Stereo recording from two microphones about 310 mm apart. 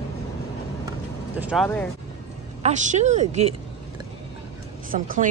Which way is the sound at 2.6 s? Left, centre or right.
Right.